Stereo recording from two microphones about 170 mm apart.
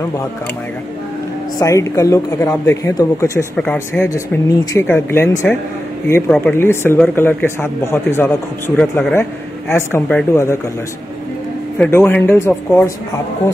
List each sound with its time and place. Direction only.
1.6 s speech: 20° left (ahead or behind)
3.5 s speech: 10° left (ahead or behind)
11.8 s speech: 10° left (ahead or behind)